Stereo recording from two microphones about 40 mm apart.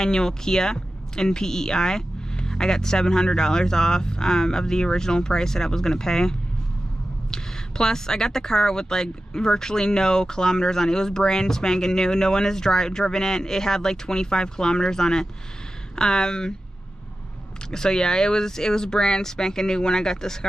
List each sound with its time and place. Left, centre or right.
0.0 s speech: centre
17.6 s speech: centre